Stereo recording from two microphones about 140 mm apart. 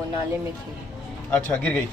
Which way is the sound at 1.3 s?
10° left (ahead or behind).